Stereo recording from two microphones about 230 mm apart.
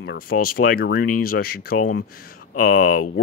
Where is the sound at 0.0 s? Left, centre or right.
Left.